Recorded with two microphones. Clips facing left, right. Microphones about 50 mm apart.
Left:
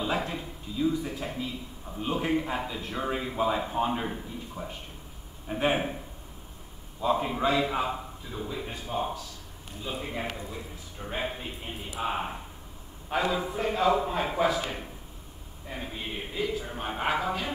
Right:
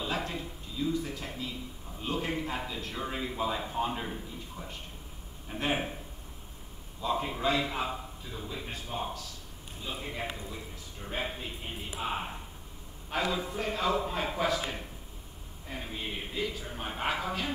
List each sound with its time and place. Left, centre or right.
0.0 s a man's voice: centre
7.0 s a man's voice: centre
10.5 s a sound: centre
12.0 s a man's voice: centre